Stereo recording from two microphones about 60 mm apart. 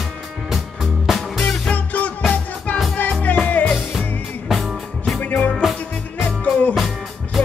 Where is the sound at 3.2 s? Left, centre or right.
Left.